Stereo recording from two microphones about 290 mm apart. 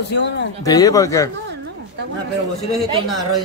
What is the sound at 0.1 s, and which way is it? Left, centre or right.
Speech, left.